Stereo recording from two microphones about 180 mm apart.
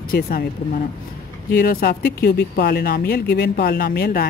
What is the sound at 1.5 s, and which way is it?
Speech, 55° left (ahead or behind).